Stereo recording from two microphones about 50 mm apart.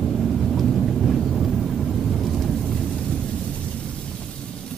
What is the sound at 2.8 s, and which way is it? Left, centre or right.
Thunder, left.